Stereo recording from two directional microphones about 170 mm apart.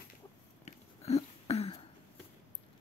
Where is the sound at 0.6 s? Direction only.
40° left (ahead or behind).